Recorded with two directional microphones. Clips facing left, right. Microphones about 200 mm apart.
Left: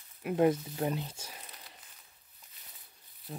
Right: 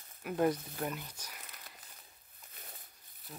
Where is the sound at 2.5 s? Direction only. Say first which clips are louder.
Right 8 dB; 50° right (ahead or behind).